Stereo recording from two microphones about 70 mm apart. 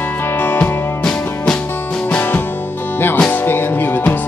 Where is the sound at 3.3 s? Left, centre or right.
Left.